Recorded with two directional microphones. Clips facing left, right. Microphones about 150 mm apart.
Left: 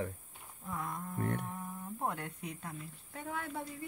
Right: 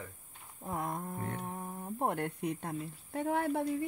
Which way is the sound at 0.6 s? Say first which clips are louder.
Right 4 dB; 45° right (ahead or behind).